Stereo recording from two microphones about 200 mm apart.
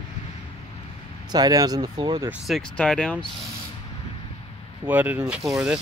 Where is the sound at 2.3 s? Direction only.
Centre (ahead or behind).